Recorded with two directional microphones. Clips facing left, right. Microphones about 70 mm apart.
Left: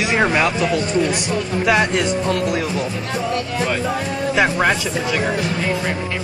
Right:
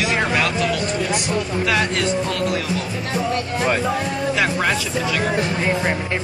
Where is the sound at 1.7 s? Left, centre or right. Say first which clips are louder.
Left 4 dB; left.